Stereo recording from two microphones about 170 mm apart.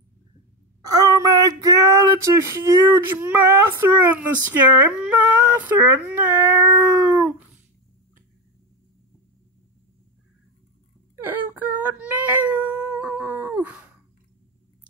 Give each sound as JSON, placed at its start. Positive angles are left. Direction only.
{"t": 0.8, "sound": "a sound", "side_deg": -20}
{"t": 5.6, "sound": "speech", "side_deg": -10}
{"t": 11.2, "sound": "cat", "side_deg": -10}